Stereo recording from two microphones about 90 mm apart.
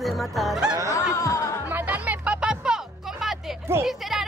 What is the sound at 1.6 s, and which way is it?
Music, 20° right (ahead or behind).